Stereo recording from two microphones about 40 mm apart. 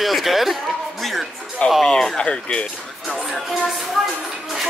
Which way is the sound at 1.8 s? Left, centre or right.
Centre.